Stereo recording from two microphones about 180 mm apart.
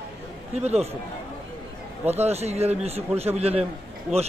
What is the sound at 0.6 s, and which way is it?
Speech, 35° right (ahead or behind).